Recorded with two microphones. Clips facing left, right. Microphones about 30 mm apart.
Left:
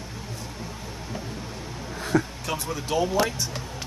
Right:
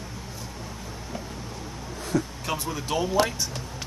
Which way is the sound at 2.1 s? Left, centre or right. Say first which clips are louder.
Left 3 dB; left.